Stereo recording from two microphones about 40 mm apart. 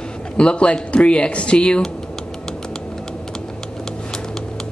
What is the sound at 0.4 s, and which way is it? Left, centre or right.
Speech, left.